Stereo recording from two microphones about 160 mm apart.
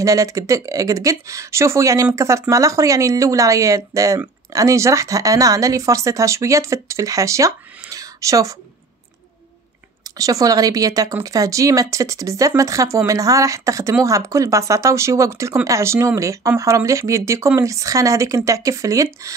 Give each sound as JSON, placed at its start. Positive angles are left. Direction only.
{"t": 0.0, "sound": "speech", "side_deg": -20}
{"t": 7.9, "sound": "a sound", "side_deg": -20}
{"t": 10.1, "sound": "speech", "side_deg": -20}